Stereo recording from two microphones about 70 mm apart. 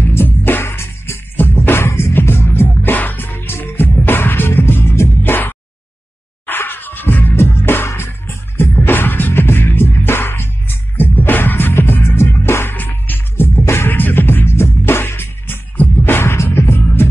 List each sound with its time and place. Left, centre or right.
0.0 s music: left